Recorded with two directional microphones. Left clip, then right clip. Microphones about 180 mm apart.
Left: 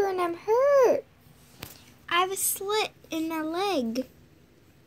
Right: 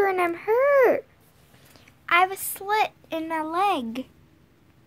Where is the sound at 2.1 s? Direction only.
20° right (ahead or behind).